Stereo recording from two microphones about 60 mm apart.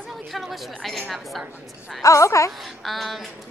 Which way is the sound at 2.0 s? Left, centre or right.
Left.